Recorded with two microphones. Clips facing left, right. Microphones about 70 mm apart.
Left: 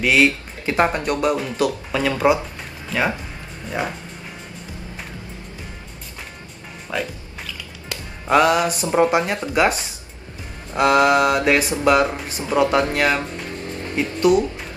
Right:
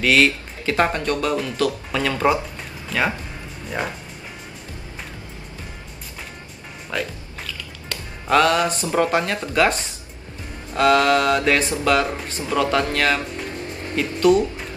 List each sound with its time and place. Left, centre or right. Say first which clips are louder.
0.0 s speech: left 1 dB; centre
6.9 s speech: left 1 dB; centre
7.9 s music: left 1 dB; centre
8.8 s speech: left 2 dB; centre